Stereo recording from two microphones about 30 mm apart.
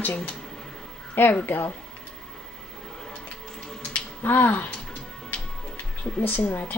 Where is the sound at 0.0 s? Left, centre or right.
Left.